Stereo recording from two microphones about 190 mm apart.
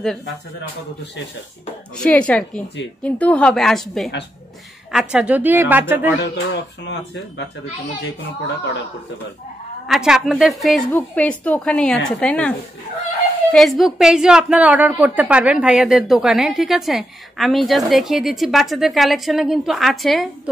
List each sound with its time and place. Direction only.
2.0 s a woman's voice: 5° left (ahead or behind); by 6.0 s 10° right (ahead or behind)
6.0 s speech: 65° left (ahead or behind)
9.8 s a woman's voice: 5° right (ahead or behind)